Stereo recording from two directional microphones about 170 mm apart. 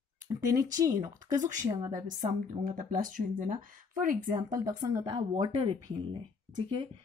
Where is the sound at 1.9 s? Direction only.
50° right (ahead or behind).